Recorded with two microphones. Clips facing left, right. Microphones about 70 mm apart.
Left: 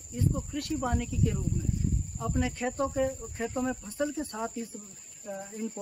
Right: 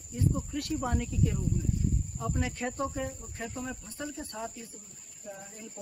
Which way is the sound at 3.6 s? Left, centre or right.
Centre.